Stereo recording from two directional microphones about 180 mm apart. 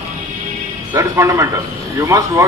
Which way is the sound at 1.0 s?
15° right (ahead or behind).